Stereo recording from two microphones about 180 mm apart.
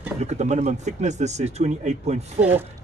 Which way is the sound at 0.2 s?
40° right (ahead or behind).